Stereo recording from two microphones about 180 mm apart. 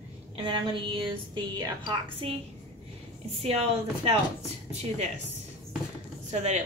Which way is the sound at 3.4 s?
35° right (ahead or behind).